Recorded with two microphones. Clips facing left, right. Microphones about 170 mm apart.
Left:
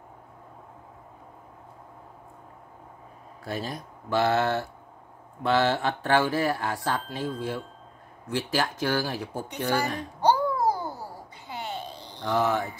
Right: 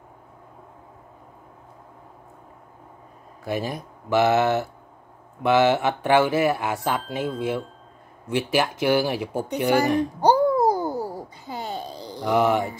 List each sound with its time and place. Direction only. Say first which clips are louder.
3.4 s speech: right 5 dB; 15° right (ahead or behind)
10.7 s babbling: right 6 dB; 40° right (ahead or behind)
12.2 s speech: right 5 dB; 10° right (ahead or behind)